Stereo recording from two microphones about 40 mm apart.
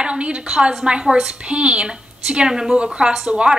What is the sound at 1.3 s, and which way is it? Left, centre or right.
Speech, right.